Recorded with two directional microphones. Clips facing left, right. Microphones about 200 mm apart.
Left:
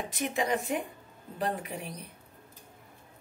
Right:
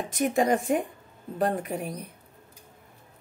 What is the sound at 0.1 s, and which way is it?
Speech, 45° right (ahead or behind).